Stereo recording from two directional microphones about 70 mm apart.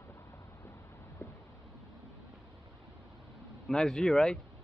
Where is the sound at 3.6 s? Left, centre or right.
Centre.